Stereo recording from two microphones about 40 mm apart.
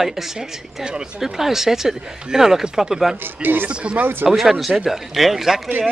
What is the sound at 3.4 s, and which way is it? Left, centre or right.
Speech, right.